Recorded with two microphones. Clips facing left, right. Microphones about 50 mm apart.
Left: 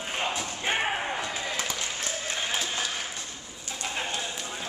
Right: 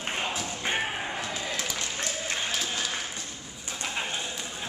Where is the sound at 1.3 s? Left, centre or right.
Centre.